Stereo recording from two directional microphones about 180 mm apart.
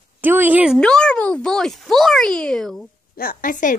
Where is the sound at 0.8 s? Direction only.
5° left (ahead or behind).